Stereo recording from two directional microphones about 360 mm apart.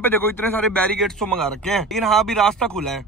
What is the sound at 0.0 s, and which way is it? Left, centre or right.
A man's voice, centre.